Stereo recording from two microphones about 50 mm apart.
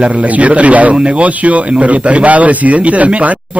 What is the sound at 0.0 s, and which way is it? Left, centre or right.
Speech, right.